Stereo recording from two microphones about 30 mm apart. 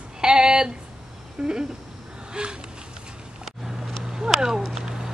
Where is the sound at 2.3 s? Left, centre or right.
Right.